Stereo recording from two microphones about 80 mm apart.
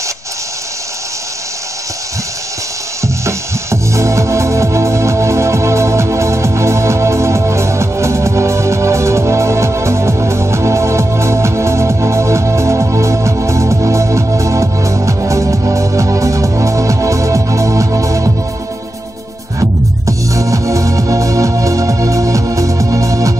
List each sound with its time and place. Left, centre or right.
3.0 s music: right
19.6 s music: right